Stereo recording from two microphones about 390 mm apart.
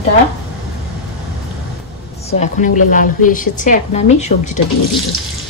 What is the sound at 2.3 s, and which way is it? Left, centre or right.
A woman's voice, centre.